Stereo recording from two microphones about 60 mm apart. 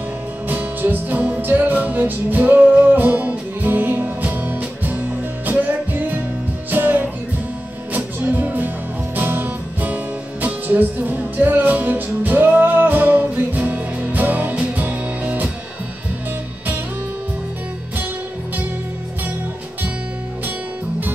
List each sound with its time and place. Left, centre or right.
0.5 s music: right